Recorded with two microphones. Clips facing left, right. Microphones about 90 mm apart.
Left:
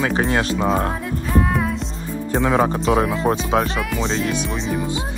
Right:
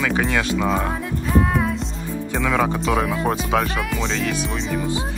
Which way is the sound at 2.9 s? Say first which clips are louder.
Left 3 dB; 5° left (ahead or behind).